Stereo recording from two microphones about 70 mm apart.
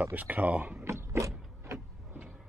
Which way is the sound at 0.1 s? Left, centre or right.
Right.